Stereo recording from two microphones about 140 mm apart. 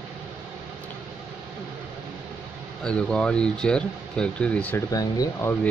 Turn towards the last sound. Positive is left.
turn(degrees=25)  # may be behind; listen again after turning